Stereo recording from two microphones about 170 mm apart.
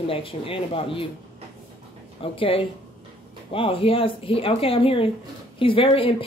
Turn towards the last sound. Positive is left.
turn(degrees=35)  # may be behind; listen again after turning